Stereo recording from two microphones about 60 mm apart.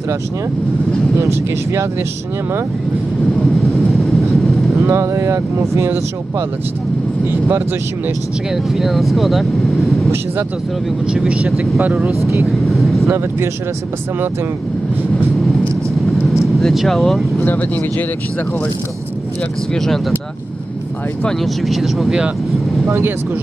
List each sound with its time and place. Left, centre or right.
1.2 s speech: right
3.7 s vehicle: centre
4.8 s speech: right
8.7 s speech: centre
11.1 s speech: centre
12.6 s vehicle: centre
13.0 s speech: right
16.5 s speech: centre
17.5 s speech: left
21.6 s speech: centre